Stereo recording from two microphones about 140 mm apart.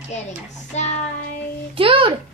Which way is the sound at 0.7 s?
55° left (ahead or behind).